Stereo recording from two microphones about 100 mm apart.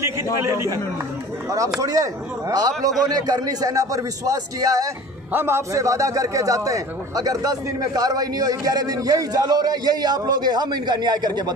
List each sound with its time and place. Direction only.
0.0 s a man's voice: 30° right (ahead or behind)
1.8 s a man's voice: 35° right (ahead or behind)
5.3 s a man's voice: 25° right (ahead or behind); by 11.5 s 45° right (ahead or behind)